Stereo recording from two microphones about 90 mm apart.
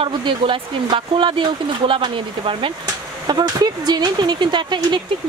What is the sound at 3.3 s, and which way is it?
Speech, 50° right (ahead or behind).